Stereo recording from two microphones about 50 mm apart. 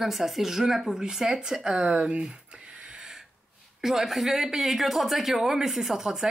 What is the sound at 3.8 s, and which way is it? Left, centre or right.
Speech, centre.